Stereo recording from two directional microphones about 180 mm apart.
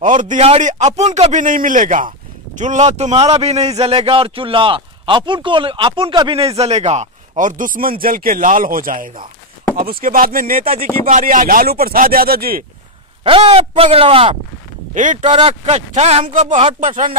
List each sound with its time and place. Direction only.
0.0 s a man's voice: 45° right (ahead or behind)
13.2 s a man's voice: 30° right (ahead or behind)
15.0 s speech: 45° right (ahead or behind)
15.2 s a man's voice: 30° right (ahead or behind); by 17.2 s 45° right (ahead or behind)